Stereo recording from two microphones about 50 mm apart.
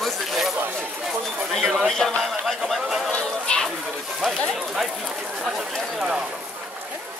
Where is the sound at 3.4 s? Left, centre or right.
Centre.